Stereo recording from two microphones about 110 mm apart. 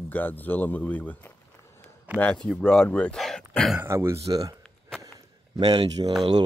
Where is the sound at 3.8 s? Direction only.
25° right (ahead or behind).